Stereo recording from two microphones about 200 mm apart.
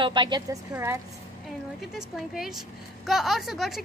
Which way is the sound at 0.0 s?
25° right (ahead or behind).